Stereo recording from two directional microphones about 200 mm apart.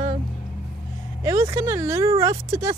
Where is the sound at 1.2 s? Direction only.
15° right (ahead or behind).